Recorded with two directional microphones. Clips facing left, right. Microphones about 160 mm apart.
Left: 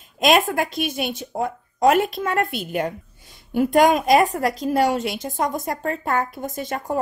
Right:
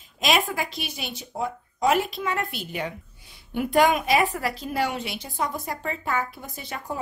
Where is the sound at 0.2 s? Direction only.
50° left (ahead or behind).